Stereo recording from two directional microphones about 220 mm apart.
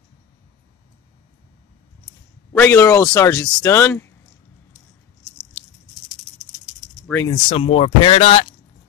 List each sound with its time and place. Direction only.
2.5 s speech: 10° left (ahead or behind)
7.1 s speech: 10° left (ahead or behind)
7.4 s speech: 30° left (ahead or behind)